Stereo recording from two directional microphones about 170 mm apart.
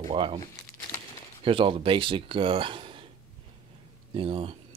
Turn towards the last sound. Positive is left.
turn(degrees=-30)  # may be behind; listen again after turning